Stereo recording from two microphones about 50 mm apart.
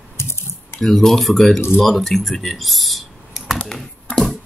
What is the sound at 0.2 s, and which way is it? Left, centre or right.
Typing, left.